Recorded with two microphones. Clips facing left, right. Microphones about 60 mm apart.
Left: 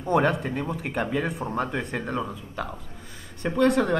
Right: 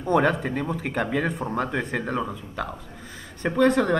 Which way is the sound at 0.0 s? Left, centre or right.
Centre.